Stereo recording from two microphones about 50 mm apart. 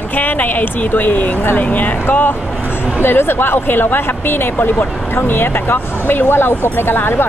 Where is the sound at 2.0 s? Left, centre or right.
Left.